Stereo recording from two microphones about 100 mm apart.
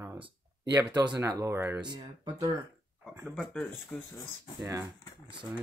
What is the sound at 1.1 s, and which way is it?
Speech, 30° right (ahead or behind).